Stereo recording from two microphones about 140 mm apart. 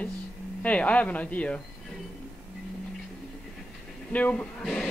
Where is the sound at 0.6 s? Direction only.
10° left (ahead or behind).